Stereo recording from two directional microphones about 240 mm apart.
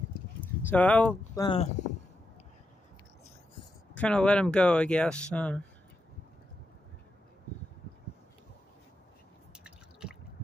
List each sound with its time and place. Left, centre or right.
0.7 s speech: centre
1.4 s speech: left
3.9 s speech: centre
9.6 s drip: centre